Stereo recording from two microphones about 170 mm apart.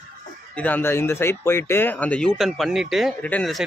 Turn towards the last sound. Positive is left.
turn(degrees=5)  # may be behind; listen again after turning